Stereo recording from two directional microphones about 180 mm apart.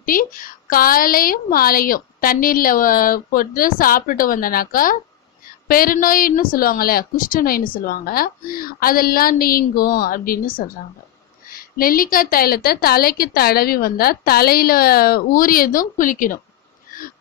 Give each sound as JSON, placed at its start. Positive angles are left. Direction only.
{"t": 0.0, "sound": "a woman's voice", "side_deg": 50}